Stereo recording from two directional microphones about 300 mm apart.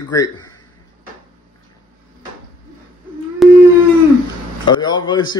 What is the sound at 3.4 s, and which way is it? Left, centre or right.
Howl, centre.